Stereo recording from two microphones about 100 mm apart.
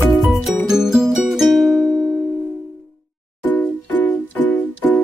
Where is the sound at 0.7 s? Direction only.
5° right (ahead or behind).